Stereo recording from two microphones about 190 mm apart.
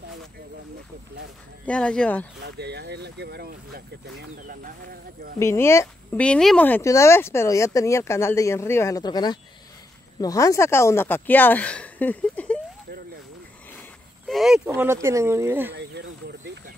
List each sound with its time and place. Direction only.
1.7 s speech: 5° left (ahead or behind)
2.4 s speech: 60° right (ahead or behind)
5.4 s speech: 15° left (ahead or behind)
13.7 s a sound: centre (ahead or behind)
14.7 s speech: 15° right (ahead or behind)
15.7 s speech: 65° right (ahead or behind)